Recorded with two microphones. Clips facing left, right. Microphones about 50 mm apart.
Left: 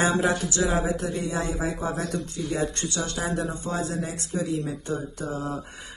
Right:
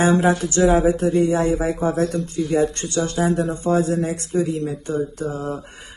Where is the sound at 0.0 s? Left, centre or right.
Right.